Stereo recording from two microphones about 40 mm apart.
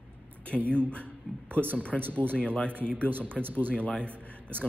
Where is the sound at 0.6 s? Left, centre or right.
Right.